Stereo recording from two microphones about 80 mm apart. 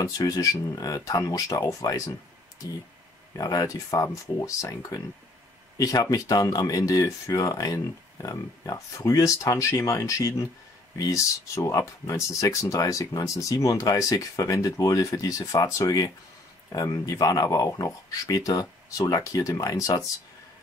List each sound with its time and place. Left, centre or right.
0.0 s speech: left
3.3 s speech: left